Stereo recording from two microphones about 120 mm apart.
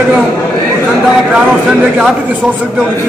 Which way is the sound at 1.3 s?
5° right (ahead or behind).